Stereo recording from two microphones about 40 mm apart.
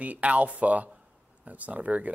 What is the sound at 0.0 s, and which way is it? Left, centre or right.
Speech, right.